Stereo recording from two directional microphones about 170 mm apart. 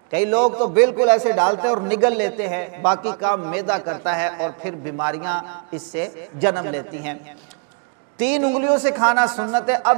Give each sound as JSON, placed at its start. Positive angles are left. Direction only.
{"t": 0.1, "sound": "a man's voice", "side_deg": -10}
{"t": 0.5, "sound": "a man's voice", "side_deg": -30}
{"t": 0.7, "sound": "a man's voice", "side_deg": -15}
{"t": 8.2, "sound": "a man's voice", "side_deg": -10}